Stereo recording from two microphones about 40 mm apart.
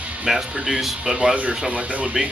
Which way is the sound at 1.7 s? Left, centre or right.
Right.